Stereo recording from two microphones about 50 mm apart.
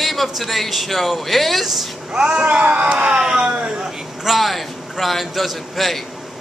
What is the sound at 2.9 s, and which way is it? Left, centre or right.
Speech, centre.